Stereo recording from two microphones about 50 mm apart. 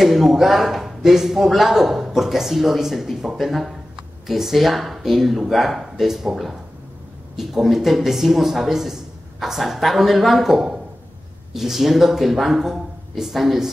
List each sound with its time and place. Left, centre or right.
0.0 s speech: centre